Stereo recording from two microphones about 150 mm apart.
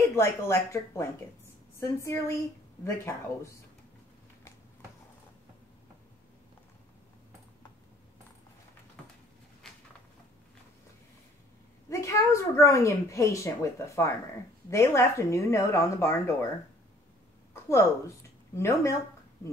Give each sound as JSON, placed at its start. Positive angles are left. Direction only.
{"t": 0.1, "sound": "speech", "side_deg": 20}
{"t": 11.9, "sound": "speech", "side_deg": 20}
{"t": 17.6, "sound": "speech", "side_deg": 20}